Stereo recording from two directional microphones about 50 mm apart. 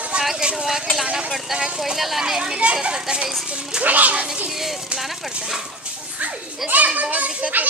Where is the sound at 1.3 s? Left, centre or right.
Centre.